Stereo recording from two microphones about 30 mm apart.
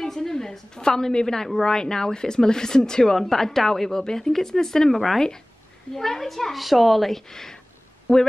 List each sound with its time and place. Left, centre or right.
0.0 s a woman's voice: centre
3.2 s speech: centre
4.9 s speech: centre